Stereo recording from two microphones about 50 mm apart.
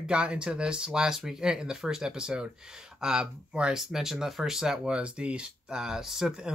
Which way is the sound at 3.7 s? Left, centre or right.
Centre.